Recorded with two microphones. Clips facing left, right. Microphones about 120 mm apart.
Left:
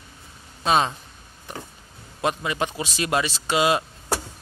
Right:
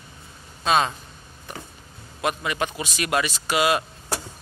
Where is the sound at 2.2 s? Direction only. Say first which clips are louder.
Left 1 dB; 25° left (ahead or behind).